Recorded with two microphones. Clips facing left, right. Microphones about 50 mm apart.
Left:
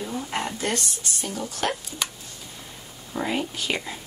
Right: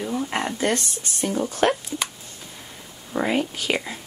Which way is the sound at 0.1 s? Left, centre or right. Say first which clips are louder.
Right 4 dB; right.